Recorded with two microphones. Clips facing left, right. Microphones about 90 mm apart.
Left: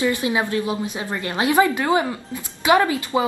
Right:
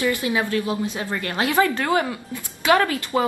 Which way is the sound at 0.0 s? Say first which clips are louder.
Left 1 dB; 20° left (ahead or behind).